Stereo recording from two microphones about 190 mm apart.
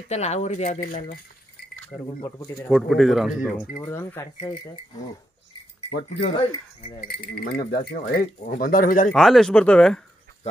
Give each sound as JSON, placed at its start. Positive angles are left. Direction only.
{"t": 0.1, "sound": "speech", "side_deg": 35}
{"t": 2.2, "sound": "speech", "side_deg": 15}
{"t": 2.7, "sound": "speech", "side_deg": 0}
{"t": 3.8, "sound": "speech", "side_deg": 10}
{"t": 6.2, "sound": "speech", "side_deg": 30}
{"t": 7.3, "sound": "a man's voice", "side_deg": 50}
{"t": 9.1, "sound": "speech", "side_deg": 0}